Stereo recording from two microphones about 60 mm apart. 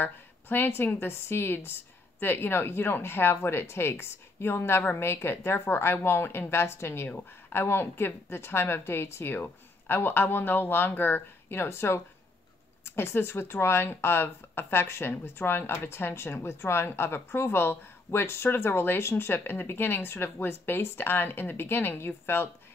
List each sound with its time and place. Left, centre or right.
0.0 s a woman's voice: left
7.1 s speech: left